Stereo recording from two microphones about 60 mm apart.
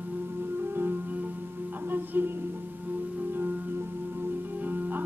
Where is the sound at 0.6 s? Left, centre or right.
Right.